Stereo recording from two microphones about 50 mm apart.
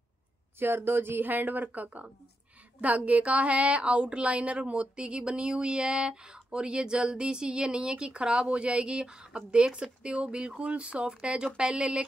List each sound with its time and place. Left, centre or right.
0.6 s a woman's voice: right
3.1 s speech: right